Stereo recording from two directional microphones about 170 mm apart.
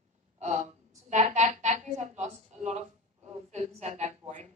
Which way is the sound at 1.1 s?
45° right (ahead or behind).